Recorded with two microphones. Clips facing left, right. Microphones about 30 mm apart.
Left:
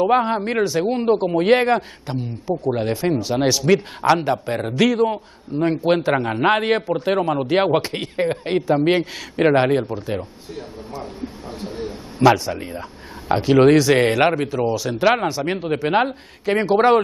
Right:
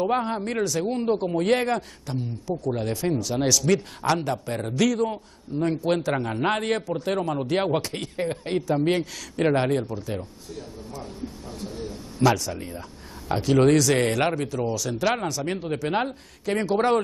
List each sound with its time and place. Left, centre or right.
0.0 s a man's voice: left